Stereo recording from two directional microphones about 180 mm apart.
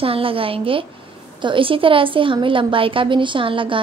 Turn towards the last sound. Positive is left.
turn(degrees=-30)  # may be behind; listen again after turning